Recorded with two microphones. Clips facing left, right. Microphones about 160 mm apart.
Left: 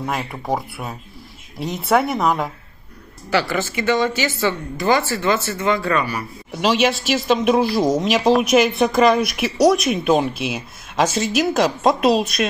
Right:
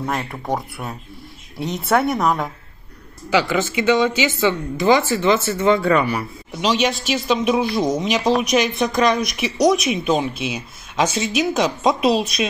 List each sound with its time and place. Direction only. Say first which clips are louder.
0.0 s a woman's voice: even; 5° left (ahead or behind)
3.3 s a woman's voice: right 2 dB; 15° right (ahead or behind)
6.5 s a woman's voice: left 2 dB; 5° left (ahead or behind)